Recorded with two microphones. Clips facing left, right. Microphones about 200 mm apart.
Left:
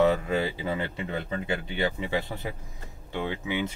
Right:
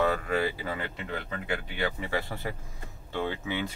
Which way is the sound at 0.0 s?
20° left (ahead or behind).